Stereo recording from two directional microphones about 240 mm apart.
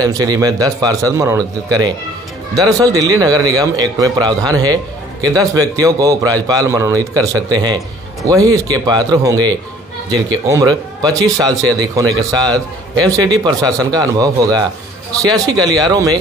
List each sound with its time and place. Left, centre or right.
0.0 s a man's voice: centre